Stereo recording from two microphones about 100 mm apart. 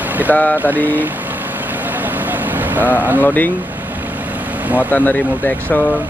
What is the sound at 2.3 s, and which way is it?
Vehicle, 20° right (ahead or behind).